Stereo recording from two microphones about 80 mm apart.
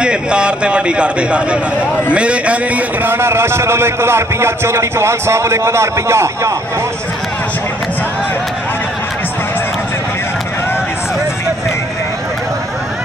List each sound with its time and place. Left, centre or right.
0.0 s a man's voice: centre
3.1 s a man's voice: right